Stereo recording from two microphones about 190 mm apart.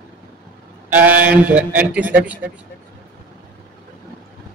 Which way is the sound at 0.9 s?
10° right (ahead or behind).